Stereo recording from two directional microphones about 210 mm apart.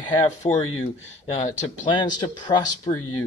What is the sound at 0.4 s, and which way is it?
Speech, 30° left (ahead or behind).